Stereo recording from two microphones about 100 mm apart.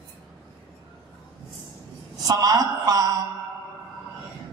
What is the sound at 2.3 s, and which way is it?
Speech, 40° right (ahead or behind).